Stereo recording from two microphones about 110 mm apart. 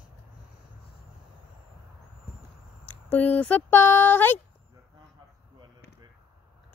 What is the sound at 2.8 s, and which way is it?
Speech, 15° left (ahead or behind).